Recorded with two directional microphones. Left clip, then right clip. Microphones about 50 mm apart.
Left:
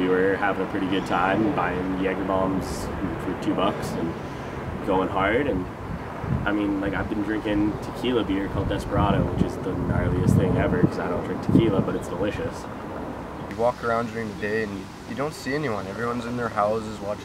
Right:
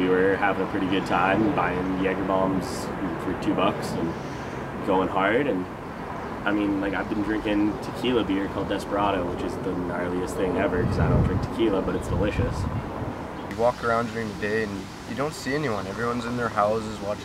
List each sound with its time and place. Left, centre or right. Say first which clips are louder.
0.0 s speech: even; centre
4.8 s speech: even; centre
13.7 s speech: right 1 dB; centre